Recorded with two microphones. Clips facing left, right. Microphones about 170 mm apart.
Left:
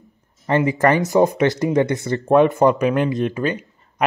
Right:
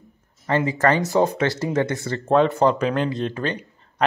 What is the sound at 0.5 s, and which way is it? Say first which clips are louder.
Speech: left 3 dB; 15° left (ahead or behind).